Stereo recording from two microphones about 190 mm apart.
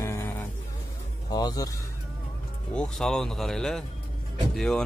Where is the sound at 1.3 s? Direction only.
20° left (ahead or behind).